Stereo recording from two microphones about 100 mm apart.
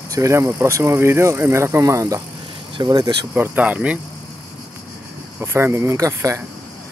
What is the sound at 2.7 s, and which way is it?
Speech, 45° right (ahead or behind).